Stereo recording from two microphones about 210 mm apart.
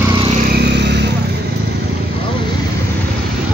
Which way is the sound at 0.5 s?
55° right (ahead or behind).